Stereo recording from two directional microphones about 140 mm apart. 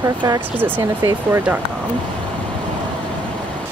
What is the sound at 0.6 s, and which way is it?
Speech, 15° right (ahead or behind).